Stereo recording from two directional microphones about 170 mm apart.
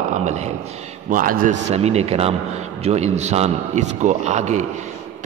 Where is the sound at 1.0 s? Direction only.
55° right (ahead or behind).